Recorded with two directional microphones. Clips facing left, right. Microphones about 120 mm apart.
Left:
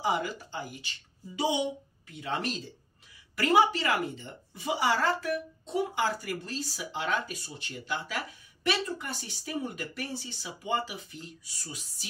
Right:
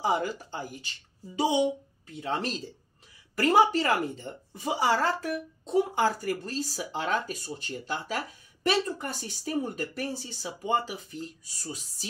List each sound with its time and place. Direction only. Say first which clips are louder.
0.0 s a woman's voice: right 2 dB; 40° right (ahead or behind)